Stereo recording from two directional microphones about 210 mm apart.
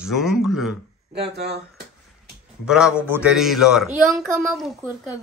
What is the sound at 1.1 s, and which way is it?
Speech, 50° right (ahead or behind).